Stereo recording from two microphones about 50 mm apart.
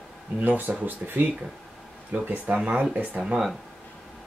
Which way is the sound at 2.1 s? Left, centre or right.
Right.